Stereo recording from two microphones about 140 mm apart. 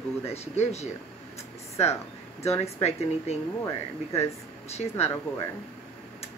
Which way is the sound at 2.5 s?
50° left (ahead or behind).